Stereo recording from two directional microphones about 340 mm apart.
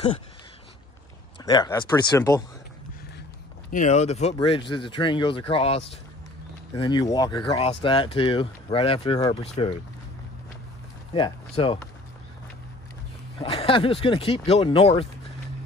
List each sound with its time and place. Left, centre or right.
1.4 s speech: centre
3.7 s speech: left
11.1 s speech: centre
13.4 s speech: centre